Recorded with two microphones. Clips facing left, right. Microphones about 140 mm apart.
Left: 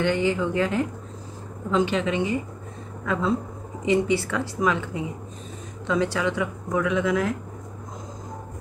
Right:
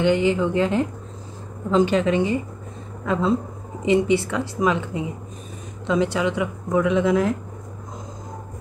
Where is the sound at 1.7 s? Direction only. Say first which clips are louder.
Right 4 dB; 40° right (ahead or behind).